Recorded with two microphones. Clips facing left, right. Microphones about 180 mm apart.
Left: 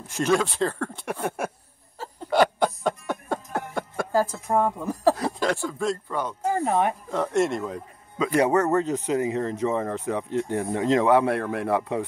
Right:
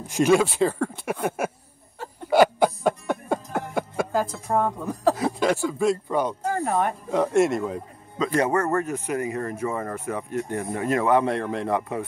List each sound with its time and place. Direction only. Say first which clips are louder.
0.0 s speech: right 4 dB; 15° right (ahead or behind)
2.2 s a sound: right 3 dB; 10° right (ahead or behind)
4.5 s speech: left 1 dB; 5° left (ahead or behind); by 6.3 s 15° right (ahead or behind)
6.7 s speech: left 1 dB; 5° left (ahead or behind)
7.1 s speech: right 3 dB; 10° right (ahead or behind)
8.2 s speech: left 2 dB; 15° left (ahead or behind)